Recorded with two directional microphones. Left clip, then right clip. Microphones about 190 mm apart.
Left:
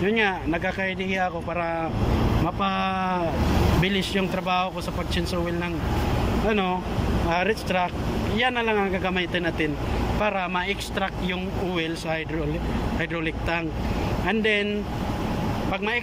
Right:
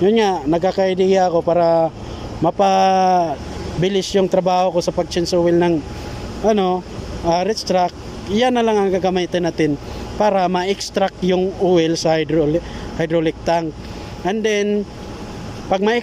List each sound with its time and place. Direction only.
0.0 s speech: 30° right (ahead or behind)